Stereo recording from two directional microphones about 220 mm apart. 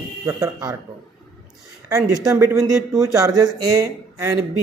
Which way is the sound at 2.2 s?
15° right (ahead or behind).